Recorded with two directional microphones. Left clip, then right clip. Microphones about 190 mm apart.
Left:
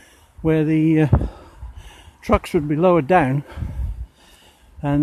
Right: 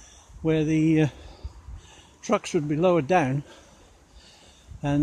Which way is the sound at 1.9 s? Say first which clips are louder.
Left 6 dB; 35° left (ahead or behind).